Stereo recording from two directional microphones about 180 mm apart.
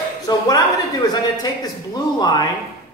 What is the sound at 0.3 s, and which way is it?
A man's voice, 25° left (ahead or behind).